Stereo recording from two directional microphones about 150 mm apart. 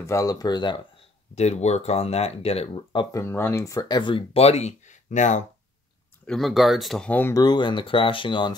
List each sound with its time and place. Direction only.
0.0 s speech: 20° left (ahead or behind)
1.3 s speech: 45° left (ahead or behind)
3.1 s speech: 20° left (ahead or behind); by 5.4 s 55° left (ahead or behind)
6.2 s speech: centre (ahead or behind); by 8.5 s 30° left (ahead or behind)